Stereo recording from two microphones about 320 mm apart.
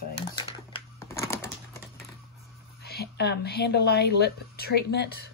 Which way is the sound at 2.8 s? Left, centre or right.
Left.